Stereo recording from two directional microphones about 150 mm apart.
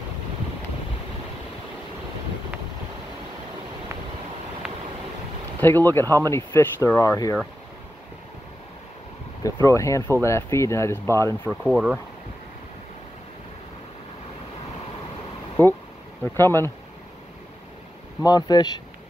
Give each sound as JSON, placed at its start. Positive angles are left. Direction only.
{"t": 4.6, "sound": "vehicle", "side_deg": -5}
{"t": 5.6, "sound": "speech", "side_deg": 15}
{"t": 6.0, "sound": "speech", "side_deg": -25}
{"t": 6.3, "sound": "speech", "side_deg": 20}
{"t": 9.4, "sound": "speech", "side_deg": 20}
{"t": 11.6, "sound": "speech", "side_deg": 0}
{"t": 15.6, "sound": "speech", "side_deg": 15}
{"t": 18.2, "sound": "speech", "side_deg": 25}